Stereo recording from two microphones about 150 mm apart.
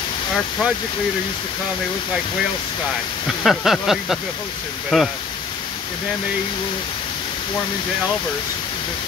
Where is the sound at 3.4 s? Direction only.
Centre (ahead or behind).